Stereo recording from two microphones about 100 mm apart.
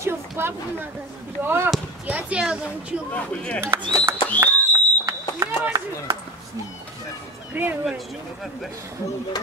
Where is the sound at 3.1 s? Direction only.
10° left (ahead or behind).